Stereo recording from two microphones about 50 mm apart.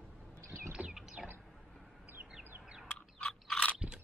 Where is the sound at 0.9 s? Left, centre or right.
Centre.